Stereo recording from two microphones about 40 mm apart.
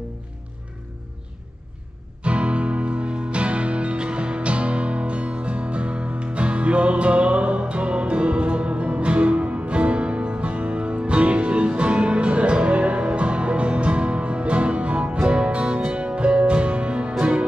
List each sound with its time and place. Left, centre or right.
2.2 s music: right